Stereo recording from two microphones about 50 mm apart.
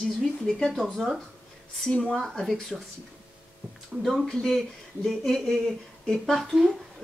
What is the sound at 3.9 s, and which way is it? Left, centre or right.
Speech, right.